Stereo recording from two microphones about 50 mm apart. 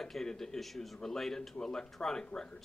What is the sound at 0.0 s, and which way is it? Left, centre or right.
Speech, centre.